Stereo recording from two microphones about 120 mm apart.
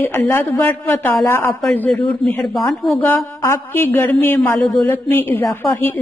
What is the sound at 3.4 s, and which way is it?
A woman's voice, 20° left (ahead or behind).